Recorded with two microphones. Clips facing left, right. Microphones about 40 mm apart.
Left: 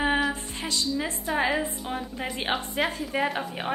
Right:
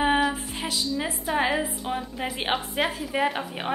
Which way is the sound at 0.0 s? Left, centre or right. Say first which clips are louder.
Right 2 dB; centre.